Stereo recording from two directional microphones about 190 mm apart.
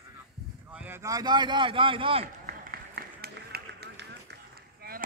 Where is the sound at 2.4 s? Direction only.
50° right (ahead or behind).